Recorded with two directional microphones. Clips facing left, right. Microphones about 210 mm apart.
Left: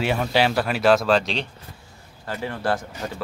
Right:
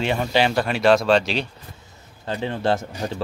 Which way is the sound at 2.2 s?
20° right (ahead or behind).